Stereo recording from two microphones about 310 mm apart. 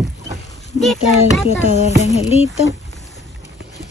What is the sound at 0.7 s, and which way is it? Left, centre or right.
Speech, centre.